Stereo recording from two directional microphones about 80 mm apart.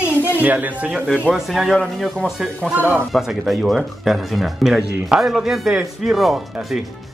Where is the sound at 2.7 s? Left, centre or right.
Right.